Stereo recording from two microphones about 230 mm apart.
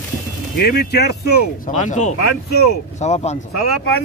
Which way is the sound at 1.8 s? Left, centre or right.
Left.